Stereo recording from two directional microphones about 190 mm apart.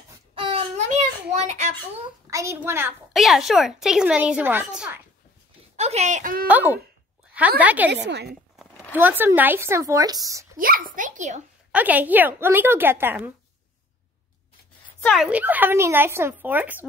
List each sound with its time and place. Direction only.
0.3 s a sound: 30° right (ahead or behind)
1.3 s a child's voice: 35° right (ahead or behind)
2.3 s speech: 15° right (ahead or behind)
3.1 s a woman's voice: centre (ahead or behind)
5.8 s speech: 35° right (ahead or behind)
6.4 s speech: 10° right (ahead or behind)
7.9 s a woman's voice: 65° right (ahead or behind)
8.9 s speech: 10° right (ahead or behind)
10.6 s a child's voice: 45° right (ahead or behind)
11.7 s speech: 10° right (ahead or behind)
15.0 s speech: 5° right (ahead or behind)